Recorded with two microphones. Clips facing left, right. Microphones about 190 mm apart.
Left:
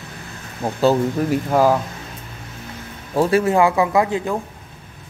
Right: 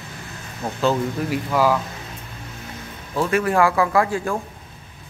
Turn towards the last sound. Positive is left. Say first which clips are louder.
# left 2 dB
turn(degrees=20)  # may be behind; listen again after turning